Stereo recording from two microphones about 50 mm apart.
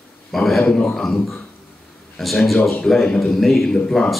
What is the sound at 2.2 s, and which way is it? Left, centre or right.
A man's voice, centre.